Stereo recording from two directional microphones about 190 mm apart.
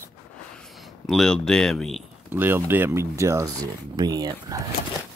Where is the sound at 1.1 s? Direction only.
5° left (ahead or behind).